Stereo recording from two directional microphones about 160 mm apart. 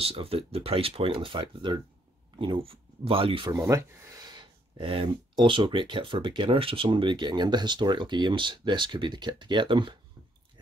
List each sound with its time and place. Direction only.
0.0 s speech: 35° right (ahead or behind)
3.5 s speech: 15° right (ahead or behind)